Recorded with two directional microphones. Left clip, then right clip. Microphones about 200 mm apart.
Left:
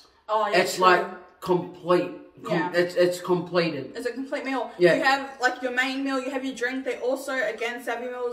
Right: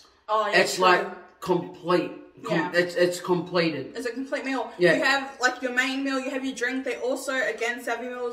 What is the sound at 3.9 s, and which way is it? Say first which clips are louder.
A woman's voice: even; 15° right (ahead or behind).